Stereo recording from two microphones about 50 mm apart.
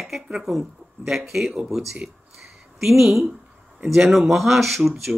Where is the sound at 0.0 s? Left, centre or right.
Centre.